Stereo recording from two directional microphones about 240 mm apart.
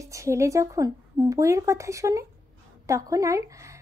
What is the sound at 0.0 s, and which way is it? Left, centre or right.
Speech, centre.